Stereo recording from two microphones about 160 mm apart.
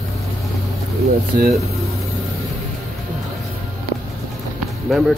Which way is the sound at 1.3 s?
75° right (ahead or behind).